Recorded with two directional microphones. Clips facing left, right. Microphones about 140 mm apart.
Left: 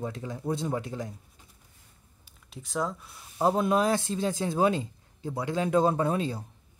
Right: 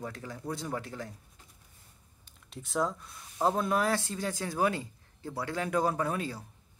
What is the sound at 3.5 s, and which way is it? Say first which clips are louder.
Speech: left 4 dB; 20° left (ahead or behind).